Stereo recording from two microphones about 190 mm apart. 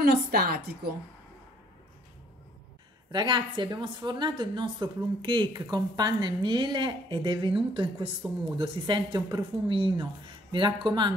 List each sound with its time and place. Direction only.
0.0 s a woman's voice: 55° right (ahead or behind)
3.1 s a woman's voice: 25° right (ahead or behind)